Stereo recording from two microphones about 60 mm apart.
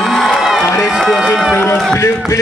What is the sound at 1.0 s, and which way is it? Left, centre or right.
Speech, centre.